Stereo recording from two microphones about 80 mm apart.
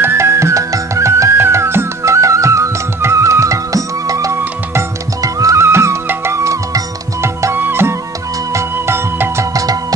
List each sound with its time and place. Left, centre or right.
0.0 s music: right
7.5 s music: right
9.5 s music: right